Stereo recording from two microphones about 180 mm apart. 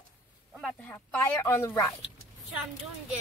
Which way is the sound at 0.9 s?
10° left (ahead or behind).